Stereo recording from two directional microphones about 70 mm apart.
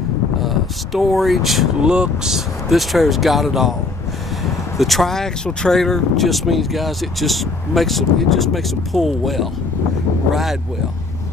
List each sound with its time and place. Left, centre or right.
0.4 s speech: centre
4.7 s speech: centre